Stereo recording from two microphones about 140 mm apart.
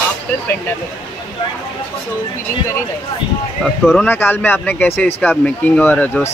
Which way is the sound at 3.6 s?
Centre (ahead or behind).